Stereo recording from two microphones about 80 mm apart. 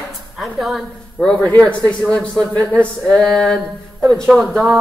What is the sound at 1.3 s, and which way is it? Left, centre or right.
Speech, centre.